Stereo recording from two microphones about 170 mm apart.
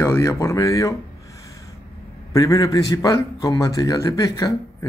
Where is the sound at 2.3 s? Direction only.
20° left (ahead or behind).